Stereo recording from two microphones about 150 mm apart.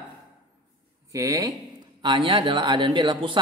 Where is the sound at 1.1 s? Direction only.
20° right (ahead or behind).